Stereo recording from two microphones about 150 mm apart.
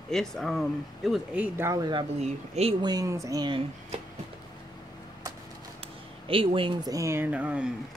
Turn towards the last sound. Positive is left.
turn(degrees=-10)  # may be behind; listen again after turning